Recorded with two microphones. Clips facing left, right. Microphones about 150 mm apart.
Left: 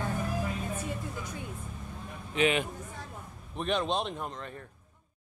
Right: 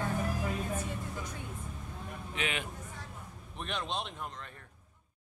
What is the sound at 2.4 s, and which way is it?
Speech, 25° left (ahead or behind).